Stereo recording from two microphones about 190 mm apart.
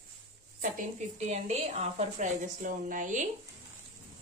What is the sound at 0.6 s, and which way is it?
A woman's voice, 45° right (ahead or behind).